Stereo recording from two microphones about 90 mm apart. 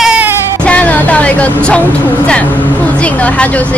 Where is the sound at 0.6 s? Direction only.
15° left (ahead or behind).